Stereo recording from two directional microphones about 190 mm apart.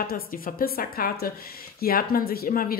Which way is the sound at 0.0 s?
50° left (ahead or behind).